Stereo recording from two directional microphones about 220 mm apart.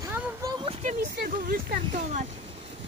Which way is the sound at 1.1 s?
40° right (ahead or behind).